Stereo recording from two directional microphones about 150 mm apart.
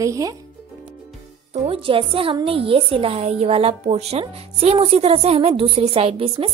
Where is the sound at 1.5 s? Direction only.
40° right (ahead or behind).